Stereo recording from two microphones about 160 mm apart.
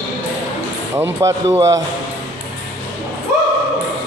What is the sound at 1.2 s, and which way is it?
Speech, 20° right (ahead or behind).